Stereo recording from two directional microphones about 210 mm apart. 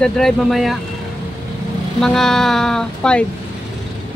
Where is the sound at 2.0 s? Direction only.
Centre (ahead or behind).